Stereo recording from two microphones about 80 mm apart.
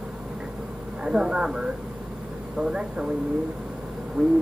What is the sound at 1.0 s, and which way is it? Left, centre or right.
Speech, centre.